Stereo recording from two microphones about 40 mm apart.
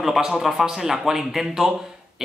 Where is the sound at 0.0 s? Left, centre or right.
Centre.